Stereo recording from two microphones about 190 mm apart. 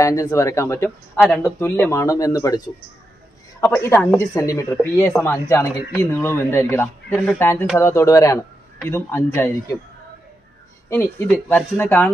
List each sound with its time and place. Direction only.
0.0 s speech: 15° left (ahead or behind)
3.6 s speech: 15° left (ahead or behind)
11.4 s speech: 10° left (ahead or behind)